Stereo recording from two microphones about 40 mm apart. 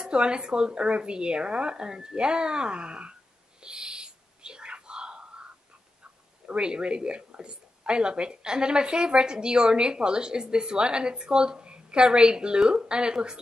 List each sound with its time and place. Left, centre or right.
0.0 s speech: right
3.6 s whispering: right
6.4 s speech: right